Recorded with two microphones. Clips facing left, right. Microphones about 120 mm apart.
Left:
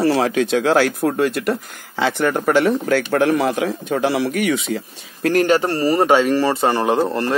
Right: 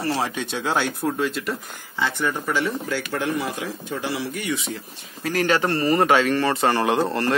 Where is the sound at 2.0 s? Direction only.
85° left.